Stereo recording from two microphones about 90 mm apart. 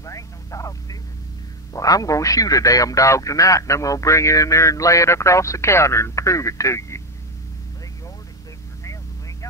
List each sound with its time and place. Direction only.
0.0 s vehicle: 35° left (ahead or behind)
1.7 s speech: 40° left (ahead or behind)